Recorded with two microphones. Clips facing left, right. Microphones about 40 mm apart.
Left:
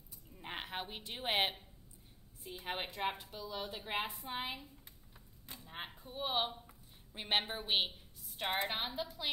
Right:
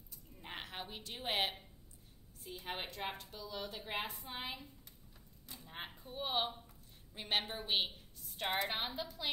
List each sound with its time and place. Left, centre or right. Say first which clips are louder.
0.4 s a woman's voice: left 3 dB; centre
5.6 s speech: left 1 dB; centre
7.2 s a woman's voice: left 2 dB; left
8.6 s speech: left 1 dB; centre